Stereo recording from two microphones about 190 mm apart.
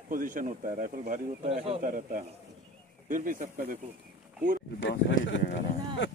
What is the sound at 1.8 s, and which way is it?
Speech, 45° right (ahead or behind).